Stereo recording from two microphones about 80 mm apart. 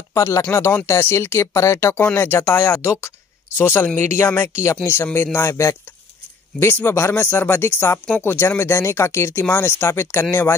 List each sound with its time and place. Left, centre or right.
0.1 s speech: left
0.5 s speech: left